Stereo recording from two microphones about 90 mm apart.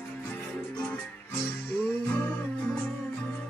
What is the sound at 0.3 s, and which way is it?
Music, 20° left (ahead or behind).